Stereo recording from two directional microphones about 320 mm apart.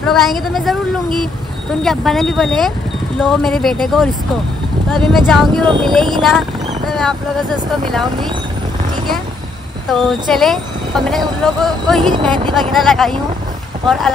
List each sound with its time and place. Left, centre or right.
0.0 s speech: centre
1.8 s speech: centre
6.9 s vehicle: centre
7.9 s speech: centre
9.8 s speech: centre
12.1 s speech: centre
12.7 s speech: centre